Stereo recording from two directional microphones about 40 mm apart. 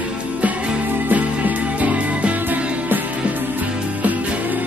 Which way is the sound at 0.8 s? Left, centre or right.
Right.